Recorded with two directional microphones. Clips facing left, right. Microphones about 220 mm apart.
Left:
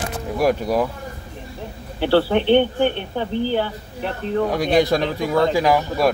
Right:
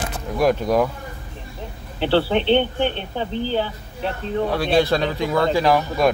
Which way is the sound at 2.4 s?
10° left (ahead or behind).